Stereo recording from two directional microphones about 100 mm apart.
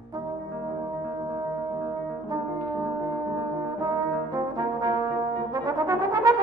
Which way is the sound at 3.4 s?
40° right (ahead or behind).